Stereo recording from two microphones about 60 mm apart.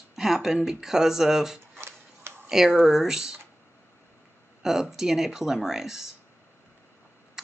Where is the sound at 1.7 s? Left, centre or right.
Right.